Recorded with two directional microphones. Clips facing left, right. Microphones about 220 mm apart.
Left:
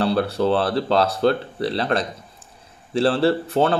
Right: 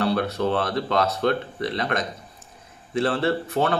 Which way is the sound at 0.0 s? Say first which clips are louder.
Left 3 dB; 30° left (ahead or behind).